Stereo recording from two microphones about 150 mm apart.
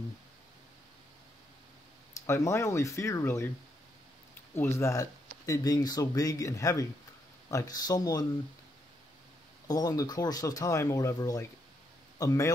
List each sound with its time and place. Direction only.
2.2 s speech: 20° left (ahead or behind)
4.6 s speech: 20° left (ahead or behind)
9.7 s speech: 25° left (ahead or behind)